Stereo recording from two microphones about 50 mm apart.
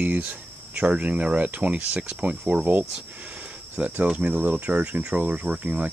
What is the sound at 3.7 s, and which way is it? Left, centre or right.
Speech, right.